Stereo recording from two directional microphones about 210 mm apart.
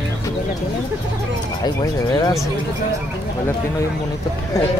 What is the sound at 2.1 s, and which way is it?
Speech, 15° left (ahead or behind).